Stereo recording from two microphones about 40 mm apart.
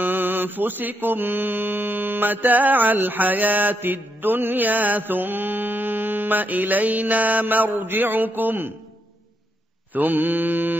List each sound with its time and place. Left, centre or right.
0.0 s mantra: right
9.9 s mantra: right